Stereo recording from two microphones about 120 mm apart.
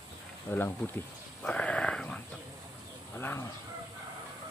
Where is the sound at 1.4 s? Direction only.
10° left (ahead or behind).